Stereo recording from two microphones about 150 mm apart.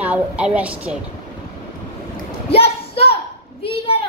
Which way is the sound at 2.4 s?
40° left (ahead or behind).